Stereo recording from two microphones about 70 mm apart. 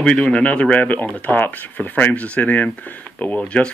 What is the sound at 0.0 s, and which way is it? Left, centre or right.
Speech, centre.